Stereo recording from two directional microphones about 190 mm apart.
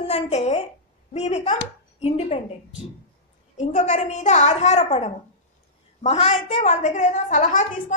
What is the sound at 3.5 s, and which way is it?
A woman's voice, 40° left (ahead or behind).